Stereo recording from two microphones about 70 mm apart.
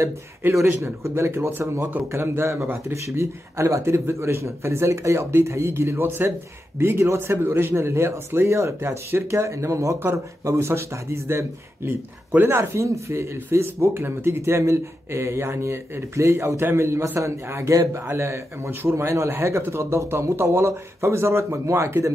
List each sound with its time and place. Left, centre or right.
0.4 s speech: right